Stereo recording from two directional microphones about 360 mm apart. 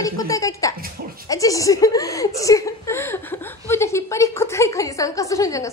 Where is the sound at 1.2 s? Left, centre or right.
Centre.